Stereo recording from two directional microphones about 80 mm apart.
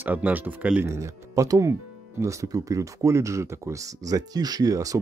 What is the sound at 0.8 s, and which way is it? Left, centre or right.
Speech, right.